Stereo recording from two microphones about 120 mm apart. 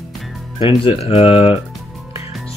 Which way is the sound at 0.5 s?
50° left (ahead or behind).